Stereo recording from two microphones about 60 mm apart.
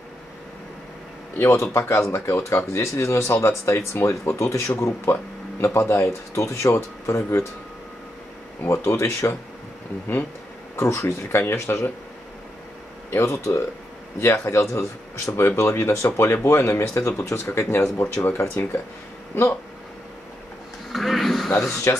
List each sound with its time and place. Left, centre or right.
1.4 s a man's voice: left
8.6 s speech: left
10.8 s speech: left
13.1 s speech: left
16.4 s speech: left
20.9 s a sound: centre
21.9 s speech: left